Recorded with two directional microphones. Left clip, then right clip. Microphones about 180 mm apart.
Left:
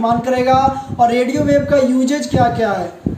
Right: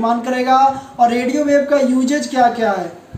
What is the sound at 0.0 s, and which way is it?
A man's voice, 5° right (ahead or behind).